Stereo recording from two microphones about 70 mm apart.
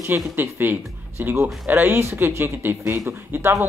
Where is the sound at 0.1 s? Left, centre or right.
Right.